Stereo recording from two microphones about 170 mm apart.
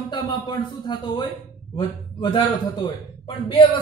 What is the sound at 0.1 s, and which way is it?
A man's voice, 25° left (ahead or behind).